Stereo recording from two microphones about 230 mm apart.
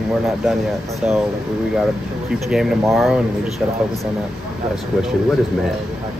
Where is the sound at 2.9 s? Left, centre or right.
Centre.